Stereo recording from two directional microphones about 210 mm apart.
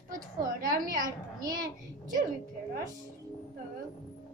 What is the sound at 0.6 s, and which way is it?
Speech, 40° right (ahead or behind).